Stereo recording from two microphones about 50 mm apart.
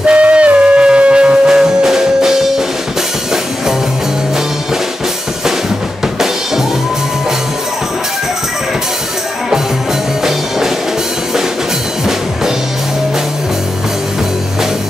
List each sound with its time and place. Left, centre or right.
0.0 s music: right
1.5 s music: centre